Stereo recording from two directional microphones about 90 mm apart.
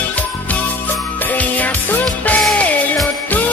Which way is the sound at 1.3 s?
15° left (ahead or behind).